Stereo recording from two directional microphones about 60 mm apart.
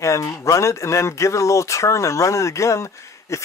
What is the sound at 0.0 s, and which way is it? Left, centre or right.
Speech, left.